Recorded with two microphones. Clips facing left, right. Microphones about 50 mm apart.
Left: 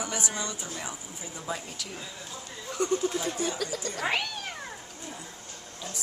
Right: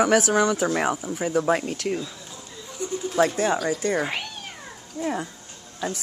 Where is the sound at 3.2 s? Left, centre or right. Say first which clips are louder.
Right 10 dB; right.